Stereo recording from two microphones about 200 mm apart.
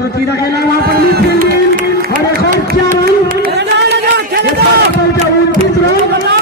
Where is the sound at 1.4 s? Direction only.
45° right (ahead or behind).